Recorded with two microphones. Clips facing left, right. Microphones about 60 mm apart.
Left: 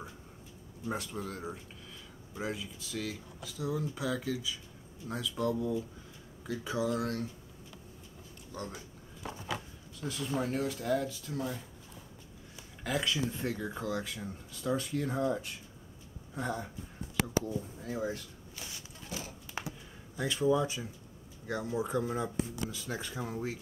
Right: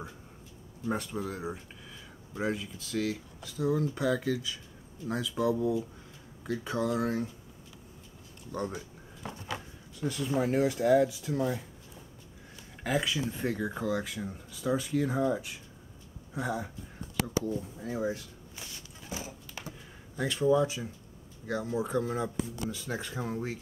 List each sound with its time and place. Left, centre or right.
0.8 s speech: centre
8.5 s speech: centre
11.4 s a sound: centre
12.8 s speech: centre
17.8 s speech: centre
19.0 s speech: centre
19.6 s a sound: left
20.2 s speech: centre